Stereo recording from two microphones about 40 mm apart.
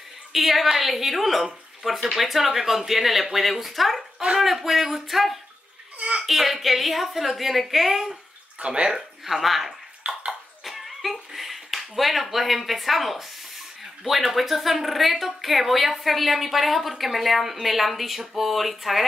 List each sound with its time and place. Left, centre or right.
0.3 s speech: centre
5.9 s a sound: right
6.2 s speech: centre
8.5 s speech: right
8.9 s speech: centre
10.0 s bathtub: right
10.6 s a sound: centre
14.0 s speech: centre